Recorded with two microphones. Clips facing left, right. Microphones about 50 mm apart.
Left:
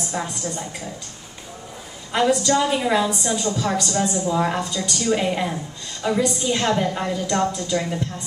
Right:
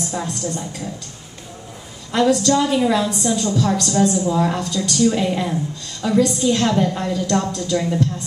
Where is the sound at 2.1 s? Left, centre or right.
Centre.